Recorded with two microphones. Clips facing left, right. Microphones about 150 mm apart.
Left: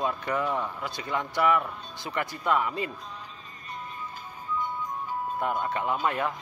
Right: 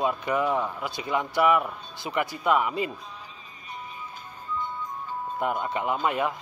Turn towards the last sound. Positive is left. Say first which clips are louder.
# right 2 dB
turn(degrees=-15)  # may be behind; listen again after turning